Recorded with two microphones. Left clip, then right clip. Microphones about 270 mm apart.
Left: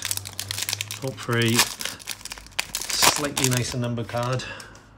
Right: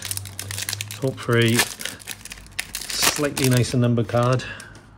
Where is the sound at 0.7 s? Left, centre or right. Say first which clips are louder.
Right 3 dB; centre.